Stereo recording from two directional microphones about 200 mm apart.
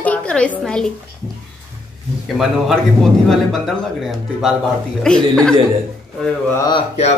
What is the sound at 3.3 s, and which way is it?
A man's voice, centre (ahead or behind).